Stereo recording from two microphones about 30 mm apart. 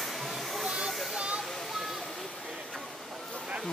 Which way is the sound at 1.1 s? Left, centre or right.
Right.